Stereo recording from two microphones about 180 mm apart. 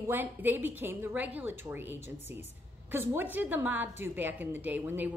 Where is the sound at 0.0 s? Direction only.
10° right (ahead or behind).